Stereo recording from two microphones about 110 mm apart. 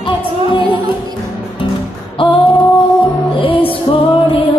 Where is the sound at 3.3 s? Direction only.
50° left (ahead or behind).